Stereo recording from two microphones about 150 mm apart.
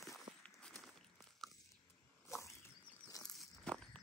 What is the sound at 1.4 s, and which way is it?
Biting, centre (ahead or behind).